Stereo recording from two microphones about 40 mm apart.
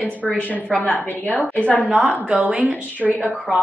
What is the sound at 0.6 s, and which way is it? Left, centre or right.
Speech, left.